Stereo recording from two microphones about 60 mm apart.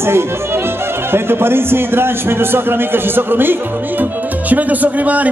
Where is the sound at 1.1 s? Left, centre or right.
Right.